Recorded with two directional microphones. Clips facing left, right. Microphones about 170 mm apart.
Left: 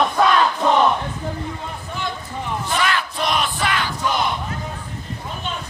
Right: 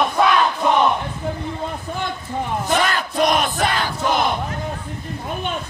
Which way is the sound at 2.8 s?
45° right (ahead or behind).